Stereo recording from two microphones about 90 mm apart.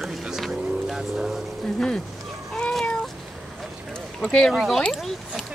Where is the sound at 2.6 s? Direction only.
10° left (ahead or behind).